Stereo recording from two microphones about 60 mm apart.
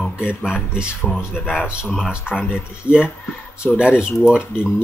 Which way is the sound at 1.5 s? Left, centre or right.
Centre.